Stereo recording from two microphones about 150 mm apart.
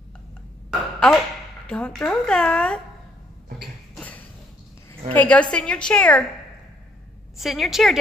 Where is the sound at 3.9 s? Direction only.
10° left (ahead or behind).